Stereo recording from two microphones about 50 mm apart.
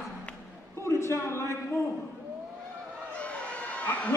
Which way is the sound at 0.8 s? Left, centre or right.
Left.